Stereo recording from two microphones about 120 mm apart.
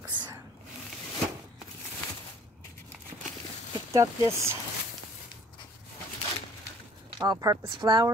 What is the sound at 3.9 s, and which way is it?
Speech, 25° right (ahead or behind).